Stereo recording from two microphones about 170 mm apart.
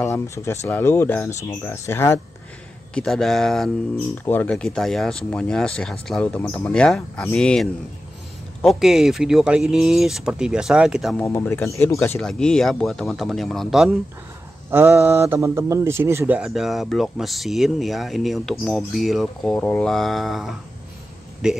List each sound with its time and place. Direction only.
0.0 s speech: 15° left (ahead or behind)
2.9 s speech: 5° left (ahead or behind)
11.1 s speech: 10° left (ahead or behind)
12.2 s speech: 5° left (ahead or behind)
14.7 s mantra: 15° right (ahead or behind)
15.0 s speech: 10° right (ahead or behind)